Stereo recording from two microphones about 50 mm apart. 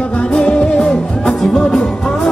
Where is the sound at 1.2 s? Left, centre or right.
Centre.